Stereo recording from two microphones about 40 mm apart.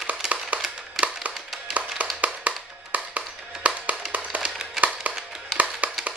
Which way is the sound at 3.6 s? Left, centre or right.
Right.